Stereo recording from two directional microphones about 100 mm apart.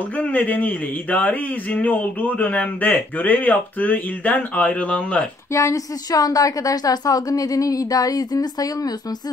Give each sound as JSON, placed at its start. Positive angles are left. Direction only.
{"t": 0.2, "sound": "speech", "side_deg": 15}
{"t": 5.5, "sound": "a woman's voice", "side_deg": 30}